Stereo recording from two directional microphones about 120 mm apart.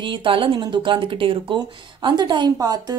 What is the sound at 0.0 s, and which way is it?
Speech, 45° right (ahead or behind).